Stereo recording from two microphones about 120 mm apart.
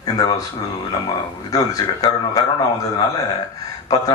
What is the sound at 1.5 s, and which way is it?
Speech, 30° left (ahead or behind).